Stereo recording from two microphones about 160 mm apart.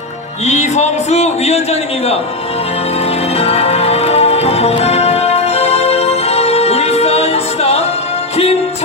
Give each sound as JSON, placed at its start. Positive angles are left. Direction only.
{"t": 0.5, "sound": "a man's voice", "side_deg": 45}
{"t": 3.3, "sound": "music", "side_deg": 40}